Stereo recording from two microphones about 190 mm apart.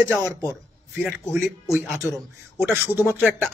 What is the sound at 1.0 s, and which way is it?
Speech, 5° left (ahead or behind).